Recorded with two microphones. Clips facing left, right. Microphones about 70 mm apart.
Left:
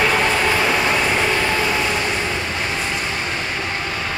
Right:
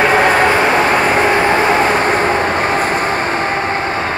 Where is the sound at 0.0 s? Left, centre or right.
Right.